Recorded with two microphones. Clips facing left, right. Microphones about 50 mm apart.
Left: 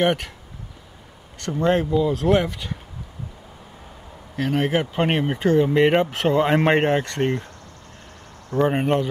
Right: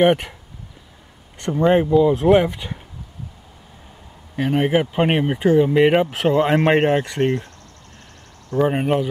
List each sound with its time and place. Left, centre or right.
0.0 s speech: centre
1.4 s speech: centre
4.4 s speech: centre
8.5 s speech: centre